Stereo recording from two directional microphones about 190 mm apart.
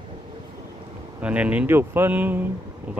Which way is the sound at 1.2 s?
5° right (ahead or behind).